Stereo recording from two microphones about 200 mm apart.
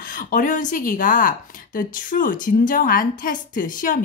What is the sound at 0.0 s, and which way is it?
A woman's voice, 45° left (ahead or behind).